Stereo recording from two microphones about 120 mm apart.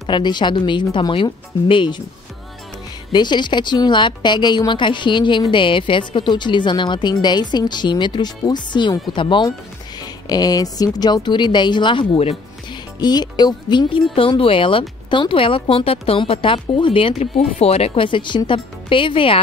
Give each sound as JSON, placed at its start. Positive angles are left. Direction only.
{"t": 0.1, "sound": "a woman's voice", "side_deg": 40}
{"t": 3.1, "sound": "a woman's voice", "side_deg": 40}
{"t": 13.0, "sound": "a woman's voice", "side_deg": 35}
{"t": 17.2, "sound": "a woman's voice", "side_deg": 60}